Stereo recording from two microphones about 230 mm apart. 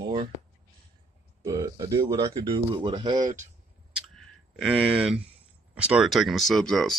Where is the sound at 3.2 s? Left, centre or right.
Right.